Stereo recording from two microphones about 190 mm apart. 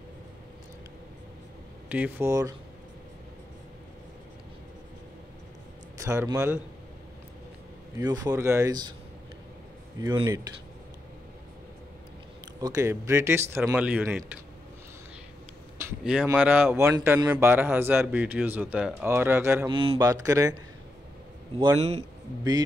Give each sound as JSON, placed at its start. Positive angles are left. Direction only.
{"t": 1.9, "sound": "a man's voice", "side_deg": -10}
{"t": 5.9, "sound": "a man's voice", "side_deg": -15}
{"t": 8.0, "sound": "speech", "side_deg": -20}
{"t": 9.9, "sound": "a man's voice", "side_deg": -20}
{"t": 12.5, "sound": "a man's voice", "side_deg": -20}
{"t": 16.0, "sound": "a man's voice", "side_deg": -5}
{"t": 19.7, "sound": "a man's voice", "side_deg": -25}
{"t": 21.5, "sound": "a man's voice", "side_deg": -30}